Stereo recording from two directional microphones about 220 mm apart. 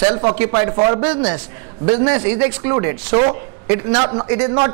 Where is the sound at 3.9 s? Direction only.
20° right (ahead or behind).